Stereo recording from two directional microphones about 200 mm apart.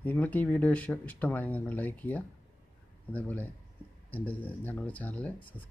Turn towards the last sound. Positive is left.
turn(degrees=5)  # may be behind; listen again after turning